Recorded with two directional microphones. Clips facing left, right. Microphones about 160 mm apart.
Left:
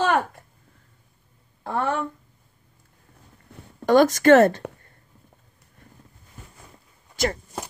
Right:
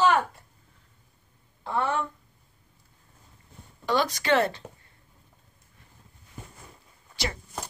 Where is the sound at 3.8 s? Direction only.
50° left (ahead or behind).